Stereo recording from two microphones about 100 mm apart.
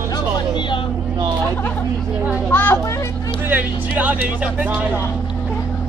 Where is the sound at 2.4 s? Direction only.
20° left (ahead or behind).